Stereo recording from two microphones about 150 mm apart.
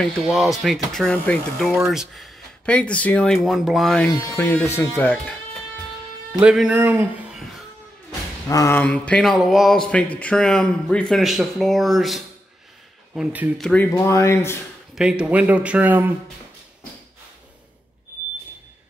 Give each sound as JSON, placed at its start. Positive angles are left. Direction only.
{"t": 0.0, "sound": "speech", "side_deg": 0}
{"t": 4.1, "sound": "speech", "side_deg": 20}
{"t": 6.4, "sound": "speech", "side_deg": -5}
{"t": 8.5, "sound": "speech", "side_deg": 20}
{"t": 13.6, "sound": "speech", "side_deg": 5}
{"t": 13.8, "sound": "speech", "side_deg": 20}
{"t": 15.0, "sound": "speech", "side_deg": -5}